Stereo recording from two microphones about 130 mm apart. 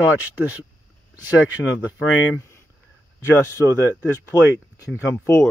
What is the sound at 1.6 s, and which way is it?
Speech, 10° left (ahead or behind).